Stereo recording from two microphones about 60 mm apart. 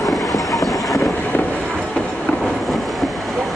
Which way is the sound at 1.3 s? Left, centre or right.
Left.